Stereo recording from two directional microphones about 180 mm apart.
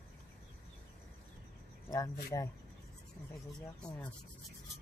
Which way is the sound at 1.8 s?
20° left (ahead or behind).